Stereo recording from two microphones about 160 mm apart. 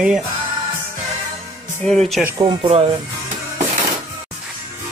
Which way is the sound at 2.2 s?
25° right (ahead or behind).